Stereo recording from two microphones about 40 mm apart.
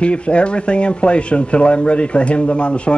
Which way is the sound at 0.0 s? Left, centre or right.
Left.